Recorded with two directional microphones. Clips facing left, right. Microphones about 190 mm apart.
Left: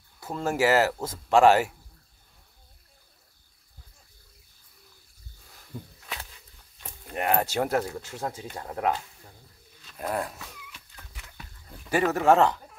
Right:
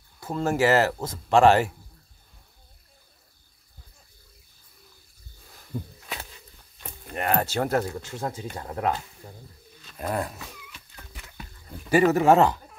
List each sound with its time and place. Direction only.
0.2 s speech: 10° left (ahead or behind)
5.7 s a sound: 55° right (ahead or behind)
7.2 s speech: 15° left (ahead or behind)
9.9 s speech: centre (ahead or behind)
11.9 s speech: 5° right (ahead or behind)